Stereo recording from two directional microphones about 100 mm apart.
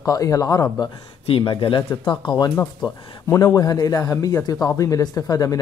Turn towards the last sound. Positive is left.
turn(degrees=40)  # may be behind; listen again after turning